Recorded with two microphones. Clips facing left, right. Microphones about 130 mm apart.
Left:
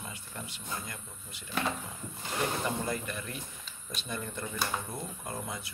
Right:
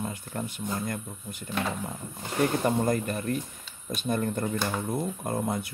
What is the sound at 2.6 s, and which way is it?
Speech, 45° right (ahead or behind).